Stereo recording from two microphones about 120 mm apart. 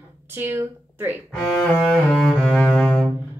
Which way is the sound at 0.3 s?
20° right (ahead or behind).